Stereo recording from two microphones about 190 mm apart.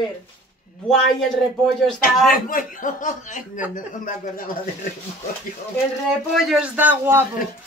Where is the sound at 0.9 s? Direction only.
Centre (ahead or behind).